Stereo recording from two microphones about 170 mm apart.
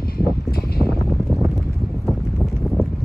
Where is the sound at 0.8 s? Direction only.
Centre (ahead or behind).